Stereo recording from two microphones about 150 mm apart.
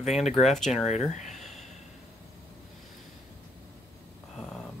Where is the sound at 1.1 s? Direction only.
50° left (ahead or behind).